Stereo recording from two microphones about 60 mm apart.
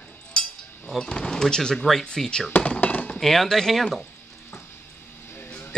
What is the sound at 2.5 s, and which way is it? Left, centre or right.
Thunk, left.